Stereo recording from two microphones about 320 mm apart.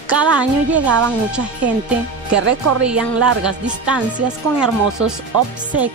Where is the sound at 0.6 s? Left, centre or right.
Right.